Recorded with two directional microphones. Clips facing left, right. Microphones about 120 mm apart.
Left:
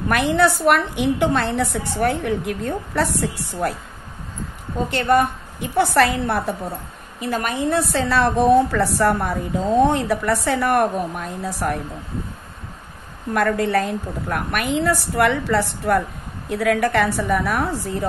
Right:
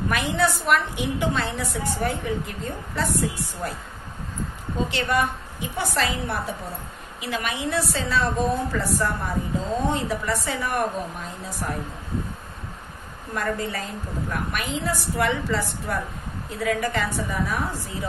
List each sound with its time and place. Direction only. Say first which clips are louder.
0.1 s a woman's voice: left 7 dB; 60° left (ahead or behind)
4.9 s a woman's voice: left 8 dB; 50° left (ahead or behind)
5.9 s a woman's voice: left 8 dB; 60° left (ahead or behind)
7.2 s a woman's voice: left 6 dB; 45° left (ahead or behind); by 11.8 s 65° left (ahead or behind)
13.3 s a woman's voice: left 8 dB; 65° left (ahead or behind)